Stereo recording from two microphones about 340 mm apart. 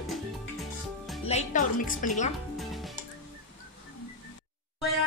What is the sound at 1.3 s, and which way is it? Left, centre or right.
Speech, left.